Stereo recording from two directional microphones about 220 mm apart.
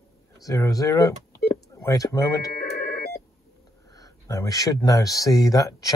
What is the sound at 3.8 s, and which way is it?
Speech, 15° left (ahead or behind).